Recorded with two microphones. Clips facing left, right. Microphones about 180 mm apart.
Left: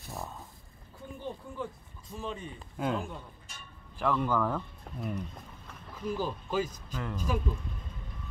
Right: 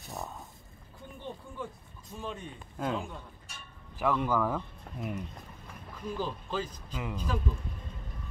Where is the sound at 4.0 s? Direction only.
5° right (ahead or behind).